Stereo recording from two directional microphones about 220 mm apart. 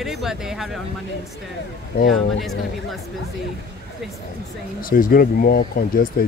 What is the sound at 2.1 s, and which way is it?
Speech, centre (ahead or behind).